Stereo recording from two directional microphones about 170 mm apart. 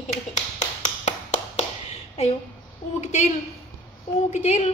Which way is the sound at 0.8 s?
45° left (ahead or behind).